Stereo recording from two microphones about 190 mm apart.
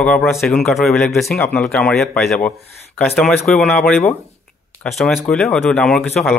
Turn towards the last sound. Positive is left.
turn(degrees=0)  # may be behind; listen again after turning